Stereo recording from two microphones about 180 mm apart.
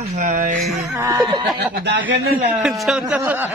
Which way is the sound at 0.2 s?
45° right (ahead or behind).